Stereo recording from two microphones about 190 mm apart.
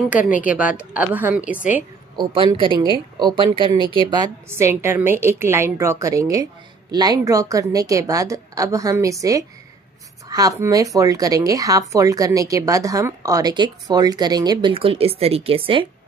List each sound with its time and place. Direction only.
0.1 s a woman's voice: 10° right (ahead or behind)
2.1 s speech: 25° right (ahead or behind)
4.5 s a woman's voice: 15° right (ahead or behind)
10.2 s a sound: 20° right (ahead or behind)
10.6 s speech: 20° right (ahead or behind)